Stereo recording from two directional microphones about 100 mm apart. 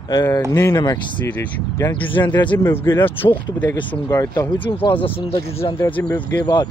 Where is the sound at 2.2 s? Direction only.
45° left (ahead or behind).